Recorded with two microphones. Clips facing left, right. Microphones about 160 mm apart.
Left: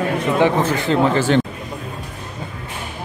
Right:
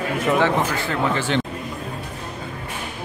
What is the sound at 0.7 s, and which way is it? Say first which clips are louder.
Speech: left 7 dB; 20° left (ahead or behind).